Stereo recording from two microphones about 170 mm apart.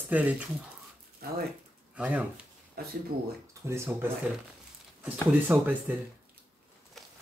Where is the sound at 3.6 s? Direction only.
15° right (ahead or behind).